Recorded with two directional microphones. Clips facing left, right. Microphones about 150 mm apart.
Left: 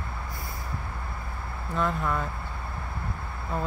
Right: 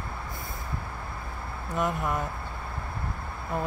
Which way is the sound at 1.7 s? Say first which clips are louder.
Left 1 dB; 15° right (ahead or behind).